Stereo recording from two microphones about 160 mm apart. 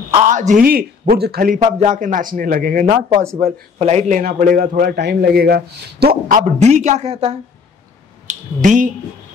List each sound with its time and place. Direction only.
0.1 s a man's voice: 50° right (ahead or behind)
3.7 s speech: 45° right (ahead or behind)
4.2 s a man's voice: 60° right (ahead or behind); by 6.1 s 75° right (ahead or behind)
6.3 s speech: 45° right (ahead or behind)
8.3 s speech: 50° right (ahead or behind)